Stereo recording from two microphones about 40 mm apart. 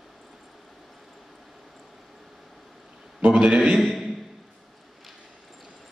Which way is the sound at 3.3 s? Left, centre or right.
Right.